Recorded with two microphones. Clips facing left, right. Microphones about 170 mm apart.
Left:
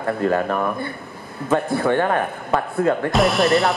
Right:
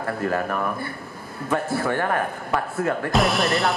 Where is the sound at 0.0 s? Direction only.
20° left (ahead or behind).